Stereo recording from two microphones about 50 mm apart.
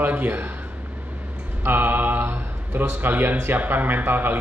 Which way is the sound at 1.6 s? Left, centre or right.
Right.